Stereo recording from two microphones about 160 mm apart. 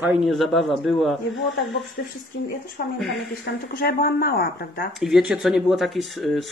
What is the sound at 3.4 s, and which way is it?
Speech, 70° left (ahead or behind).